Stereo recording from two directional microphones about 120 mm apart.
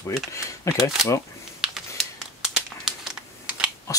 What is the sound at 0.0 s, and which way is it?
Speech, 25° left (ahead or behind).